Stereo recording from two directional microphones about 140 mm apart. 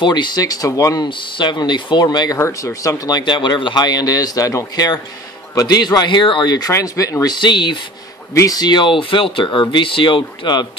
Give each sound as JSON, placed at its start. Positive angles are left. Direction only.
{"t": 0.0, "sound": "speech", "side_deg": 30}
{"t": 1.0, "sound": "speech", "side_deg": 35}